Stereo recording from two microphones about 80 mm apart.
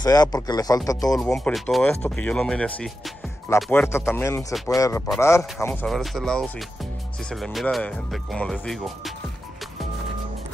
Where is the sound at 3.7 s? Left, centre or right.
Left.